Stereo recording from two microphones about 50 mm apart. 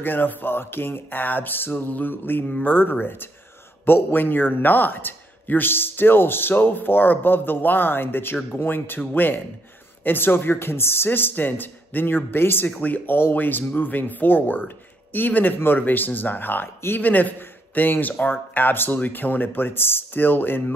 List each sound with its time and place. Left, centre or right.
0.0 s a man's voice: left
11.1 s a man's voice: left
12.8 s a man's voice: left